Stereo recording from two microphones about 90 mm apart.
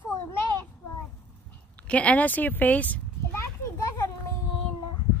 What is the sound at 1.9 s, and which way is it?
A child's voice, 15° left (ahead or behind).